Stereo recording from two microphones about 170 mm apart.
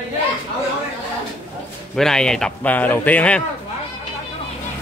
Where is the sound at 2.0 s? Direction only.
5° left (ahead or behind).